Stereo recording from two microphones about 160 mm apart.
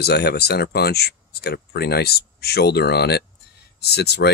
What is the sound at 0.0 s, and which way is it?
Speech, 90° left.